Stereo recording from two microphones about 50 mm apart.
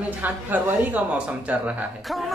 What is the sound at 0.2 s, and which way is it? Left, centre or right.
A woman's voice, right.